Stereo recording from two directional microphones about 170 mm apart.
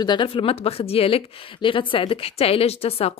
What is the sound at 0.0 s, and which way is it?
A woman's voice, 25° left (ahead or behind).